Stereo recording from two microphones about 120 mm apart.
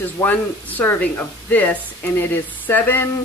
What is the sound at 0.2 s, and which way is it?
Speech, 15° left (ahead or behind).